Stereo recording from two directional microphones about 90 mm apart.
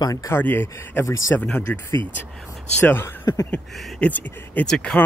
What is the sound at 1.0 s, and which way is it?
Speech, 35° left (ahead or behind).